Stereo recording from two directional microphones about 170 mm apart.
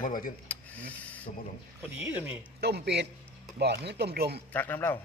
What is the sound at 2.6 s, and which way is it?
Speech, 75° right (ahead or behind).